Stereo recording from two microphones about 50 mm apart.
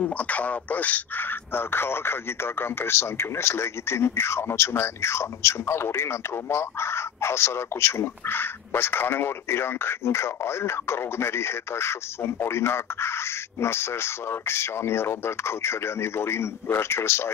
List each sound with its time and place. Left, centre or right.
0.0 s a man's voice: left